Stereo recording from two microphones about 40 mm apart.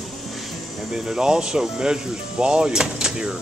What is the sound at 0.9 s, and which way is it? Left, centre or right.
Speech, centre.